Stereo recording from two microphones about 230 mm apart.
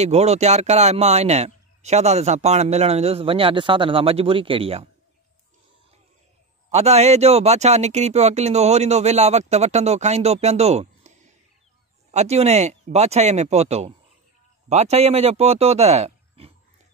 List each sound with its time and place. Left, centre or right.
0.0 s speech: right
6.7 s speech: right